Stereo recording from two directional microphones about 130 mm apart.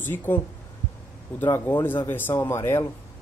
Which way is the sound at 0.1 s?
15° left (ahead or behind).